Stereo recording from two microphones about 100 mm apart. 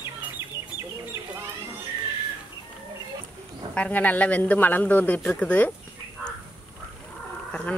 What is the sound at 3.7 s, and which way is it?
Speech, 15° left (ahead or behind).